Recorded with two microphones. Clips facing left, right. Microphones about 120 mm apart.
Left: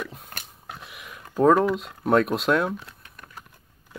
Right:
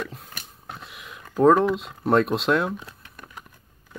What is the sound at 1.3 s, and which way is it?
Speech, centre (ahead or behind).